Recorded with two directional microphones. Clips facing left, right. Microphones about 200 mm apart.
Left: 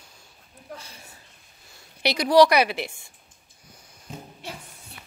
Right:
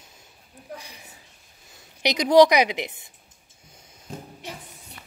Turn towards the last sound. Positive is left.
turn(degrees=-20)  # may be behind; listen again after turning